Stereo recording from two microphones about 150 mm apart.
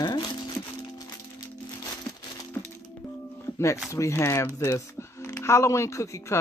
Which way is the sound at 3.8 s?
20° left (ahead or behind).